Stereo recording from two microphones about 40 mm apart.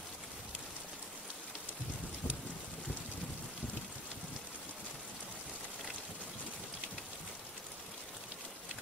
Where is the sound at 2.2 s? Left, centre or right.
Left.